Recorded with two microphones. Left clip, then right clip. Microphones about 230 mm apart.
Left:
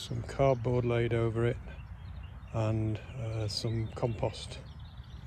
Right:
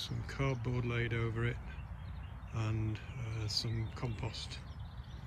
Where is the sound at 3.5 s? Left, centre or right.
Left.